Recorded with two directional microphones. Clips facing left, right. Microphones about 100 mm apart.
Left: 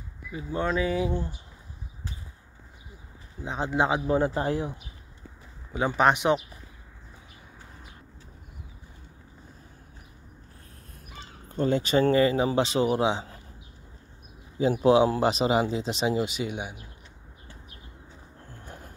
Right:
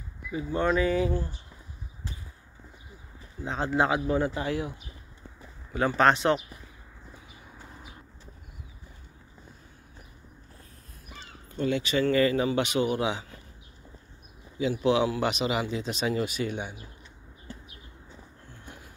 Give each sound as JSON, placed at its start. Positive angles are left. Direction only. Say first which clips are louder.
{"t": 0.3, "sound": "speech", "louder": "right 2 dB", "side_deg": 0}
{"t": 3.4, "sound": "speech", "louder": "even", "side_deg": 15}
{"t": 4.4, "sound": "speech", "louder": "left 3 dB", "side_deg": 40}
{"t": 5.7, "sound": "speech", "louder": "even", "side_deg": 15}
{"t": 11.5, "sound": "speech", "louder": "left 3 dB", "side_deg": 40}
{"t": 12.1, "sound": "speech", "louder": "right 2 dB", "side_deg": 25}
{"t": 14.6, "sound": "speech", "louder": "left 4 dB", "side_deg": 40}